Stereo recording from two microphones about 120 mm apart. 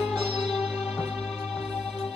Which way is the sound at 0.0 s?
Centre (ahead or behind).